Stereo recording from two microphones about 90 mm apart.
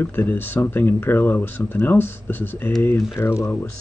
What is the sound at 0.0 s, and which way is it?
Speech, 25° left (ahead or behind).